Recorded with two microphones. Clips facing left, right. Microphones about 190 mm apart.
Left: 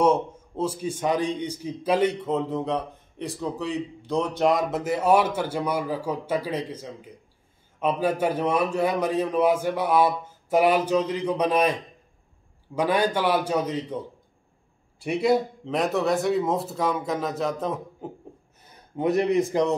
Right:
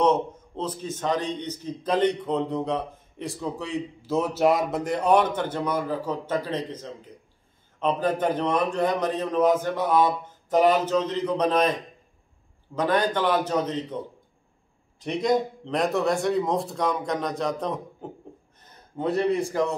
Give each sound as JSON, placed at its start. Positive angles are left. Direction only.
{"t": 0.0, "sound": "a man's voice", "side_deg": 10}
{"t": 12.7, "sound": "a man's voice", "side_deg": 10}
{"t": 15.0, "sound": "a man's voice", "side_deg": 10}